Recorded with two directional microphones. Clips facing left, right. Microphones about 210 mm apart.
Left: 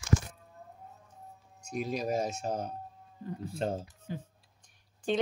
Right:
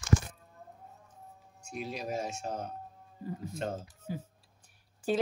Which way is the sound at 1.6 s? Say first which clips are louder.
Left 5 dB; 45° left (ahead or behind).